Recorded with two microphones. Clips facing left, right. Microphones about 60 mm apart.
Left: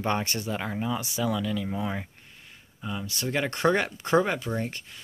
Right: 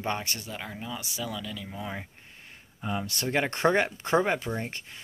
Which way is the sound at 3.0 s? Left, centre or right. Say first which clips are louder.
Even; right.